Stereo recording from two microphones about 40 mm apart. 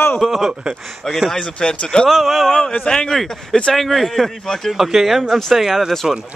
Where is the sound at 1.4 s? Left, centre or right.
Left.